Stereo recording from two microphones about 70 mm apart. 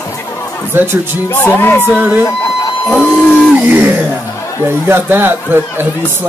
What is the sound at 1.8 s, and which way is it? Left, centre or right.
Speech, right.